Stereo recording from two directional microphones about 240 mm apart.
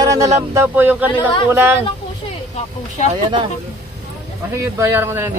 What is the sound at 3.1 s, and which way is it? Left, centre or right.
Speech, right.